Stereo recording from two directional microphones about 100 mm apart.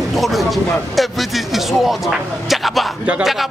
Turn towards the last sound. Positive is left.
turn(degrees=0)  # may be behind; listen again after turning